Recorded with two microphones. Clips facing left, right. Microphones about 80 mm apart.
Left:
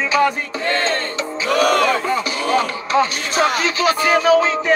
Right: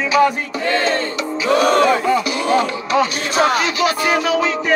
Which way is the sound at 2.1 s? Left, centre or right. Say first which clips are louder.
Right 3 dB; left.